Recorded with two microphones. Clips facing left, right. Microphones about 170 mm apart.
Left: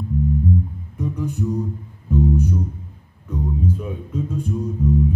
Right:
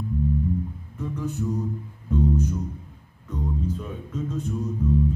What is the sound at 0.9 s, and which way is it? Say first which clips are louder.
Music: left 4 dB; 15° left (ahead or behind).